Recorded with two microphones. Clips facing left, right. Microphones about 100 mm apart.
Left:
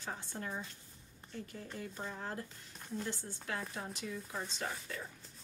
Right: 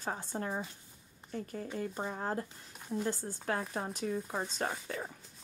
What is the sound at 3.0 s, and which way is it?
Speech, 40° right (ahead or behind).